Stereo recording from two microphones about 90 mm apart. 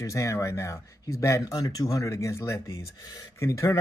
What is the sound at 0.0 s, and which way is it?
Speech, 35° left (ahead or behind).